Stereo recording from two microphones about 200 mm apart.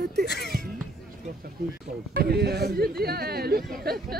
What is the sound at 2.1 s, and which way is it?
Speech, 50° right (ahead or behind).